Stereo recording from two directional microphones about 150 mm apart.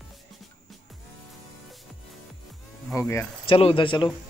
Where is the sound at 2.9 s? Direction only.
15° left (ahead or behind).